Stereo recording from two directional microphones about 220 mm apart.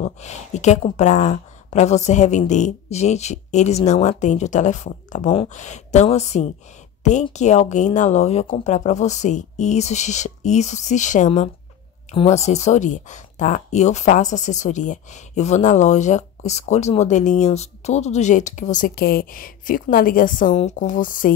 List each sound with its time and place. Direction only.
0.0 s speech: 30° left (ahead or behind)